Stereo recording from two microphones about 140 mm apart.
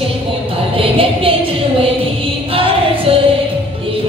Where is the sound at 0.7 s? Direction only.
40° right (ahead or behind).